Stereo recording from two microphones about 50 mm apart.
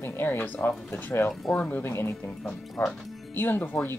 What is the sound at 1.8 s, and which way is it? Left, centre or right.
Speech, left.